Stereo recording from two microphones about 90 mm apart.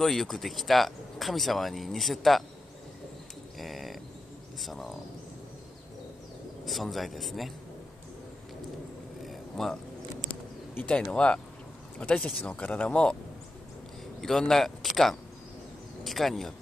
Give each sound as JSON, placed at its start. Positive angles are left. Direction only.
{"t": 0.0, "sound": "speech", "side_deg": 5}
{"t": 3.5, "sound": "a sound", "side_deg": 0}
{"t": 4.6, "sound": "speech", "side_deg": 0}
{"t": 6.6, "sound": "speech", "side_deg": 0}
{"t": 9.2, "sound": "a sound", "side_deg": 0}
{"t": 10.7, "sound": "speech", "side_deg": 20}
{"t": 14.4, "sound": "speech", "side_deg": 5}